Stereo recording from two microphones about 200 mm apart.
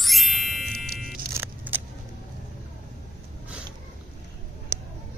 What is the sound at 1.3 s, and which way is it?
Vehicle, 10° right (ahead or behind).